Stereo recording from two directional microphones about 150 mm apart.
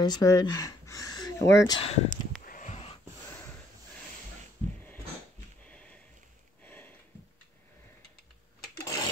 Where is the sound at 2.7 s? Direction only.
45° left (ahead or behind).